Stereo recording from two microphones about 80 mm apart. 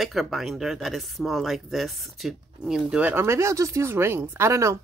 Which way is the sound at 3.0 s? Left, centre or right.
Right.